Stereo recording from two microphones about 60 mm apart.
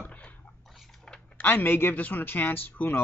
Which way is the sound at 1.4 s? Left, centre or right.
Left.